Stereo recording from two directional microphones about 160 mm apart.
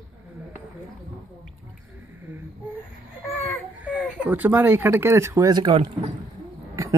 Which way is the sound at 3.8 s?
5° right (ahead or behind).